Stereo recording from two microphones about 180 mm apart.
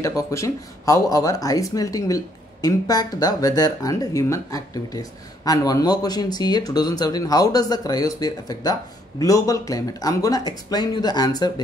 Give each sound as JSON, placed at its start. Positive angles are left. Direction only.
{"t": 0.3, "sound": "speech", "side_deg": 15}